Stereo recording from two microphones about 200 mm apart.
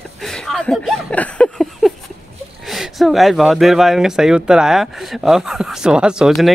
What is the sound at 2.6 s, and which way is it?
Speech, centre (ahead or behind).